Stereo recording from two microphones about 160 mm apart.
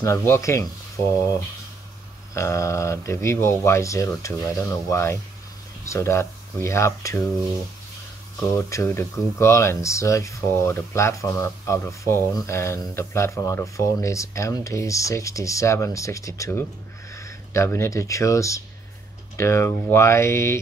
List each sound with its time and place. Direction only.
0.0 s speech: 15° left (ahead or behind)
2.3 s speech: 20° left (ahead or behind)
8.5 s speech: 20° left (ahead or behind)